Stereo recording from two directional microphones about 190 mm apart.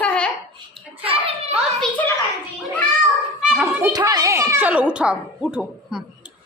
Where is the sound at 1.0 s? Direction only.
30° right (ahead or behind).